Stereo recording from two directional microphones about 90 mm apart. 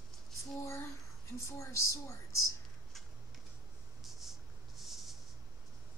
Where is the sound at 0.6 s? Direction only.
30° left (ahead or behind).